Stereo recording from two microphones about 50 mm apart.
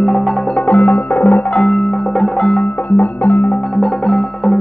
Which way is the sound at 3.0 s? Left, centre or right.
Left.